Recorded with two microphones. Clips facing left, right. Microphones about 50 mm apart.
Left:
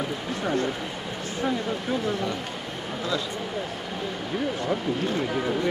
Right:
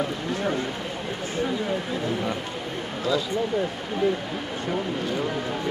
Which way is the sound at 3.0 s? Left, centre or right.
Centre.